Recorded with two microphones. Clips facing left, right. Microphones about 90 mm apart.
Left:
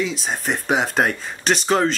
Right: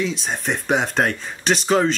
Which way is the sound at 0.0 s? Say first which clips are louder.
Even; centre (ahead or behind).